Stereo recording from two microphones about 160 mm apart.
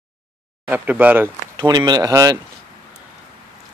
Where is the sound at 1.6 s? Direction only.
25° right (ahead or behind).